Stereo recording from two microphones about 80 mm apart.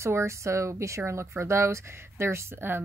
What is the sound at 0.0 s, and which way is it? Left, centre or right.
Speech, right.